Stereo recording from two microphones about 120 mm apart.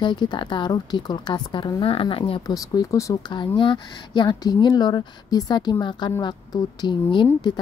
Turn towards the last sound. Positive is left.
turn(degrees=40)  # may be behind; listen again after turning